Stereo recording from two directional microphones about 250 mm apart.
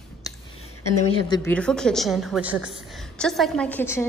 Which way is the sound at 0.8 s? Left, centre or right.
Left.